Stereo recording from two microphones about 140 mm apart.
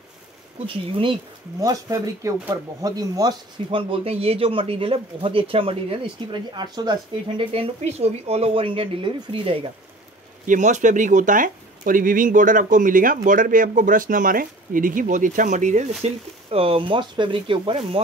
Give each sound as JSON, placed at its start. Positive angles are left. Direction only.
{"t": 0.7, "sound": "speech", "side_deg": -40}
{"t": 1.6, "sound": "speech", "side_deg": -25}
{"t": 3.9, "sound": "speech", "side_deg": -45}
{"t": 10.4, "sound": "speech", "side_deg": -65}